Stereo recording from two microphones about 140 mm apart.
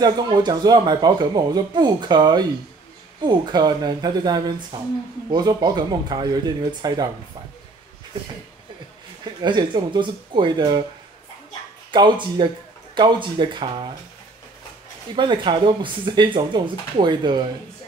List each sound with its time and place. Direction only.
0.0 s speech: 30° right (ahead or behind)
9.2 s speech: 30° right (ahead or behind)
11.9 s speech: 35° right (ahead or behind)
15.1 s speech: 35° right (ahead or behind)